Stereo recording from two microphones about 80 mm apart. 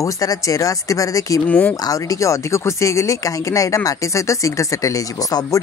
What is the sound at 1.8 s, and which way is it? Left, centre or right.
Speech, left.